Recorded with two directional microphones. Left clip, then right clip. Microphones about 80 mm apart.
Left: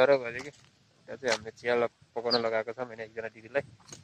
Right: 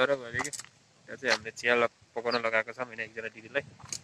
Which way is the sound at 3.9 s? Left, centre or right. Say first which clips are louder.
Right 10 dB; right.